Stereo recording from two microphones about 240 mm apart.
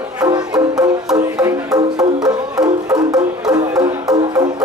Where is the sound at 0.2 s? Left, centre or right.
Centre.